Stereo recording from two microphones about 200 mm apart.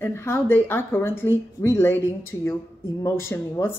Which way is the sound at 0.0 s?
10° left (ahead or behind).